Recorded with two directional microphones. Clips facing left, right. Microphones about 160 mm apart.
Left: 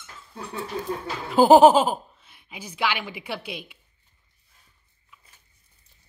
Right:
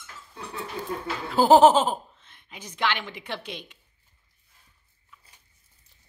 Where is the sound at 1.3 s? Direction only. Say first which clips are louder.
Left 3 dB; 15° left (ahead or behind).